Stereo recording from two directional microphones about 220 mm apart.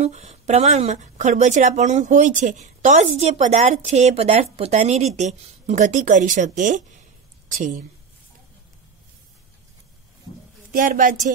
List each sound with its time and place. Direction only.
0.0 s speech: 30° right (ahead or behind)
10.7 s speech: 40° right (ahead or behind)